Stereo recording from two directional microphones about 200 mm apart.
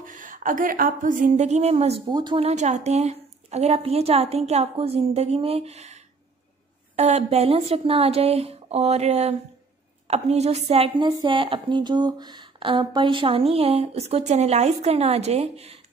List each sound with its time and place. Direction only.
0.0 s a woman's voice: 40° right (ahead or behind)
2.0 s a woman's voice: 20° right (ahead or behind)
2.4 s a woman's voice: 35° right (ahead or behind)